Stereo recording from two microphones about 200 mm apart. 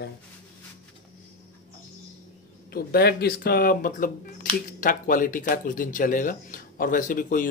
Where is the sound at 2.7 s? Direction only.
50° left (ahead or behind).